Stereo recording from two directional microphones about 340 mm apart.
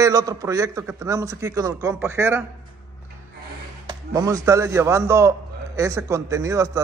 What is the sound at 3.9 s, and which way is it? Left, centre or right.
A man's voice, centre.